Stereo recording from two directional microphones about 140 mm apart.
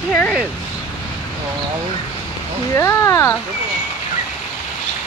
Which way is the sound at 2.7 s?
20° left (ahead or behind).